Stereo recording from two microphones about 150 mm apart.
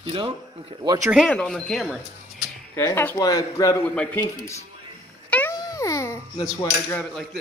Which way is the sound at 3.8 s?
10° left (ahead or behind).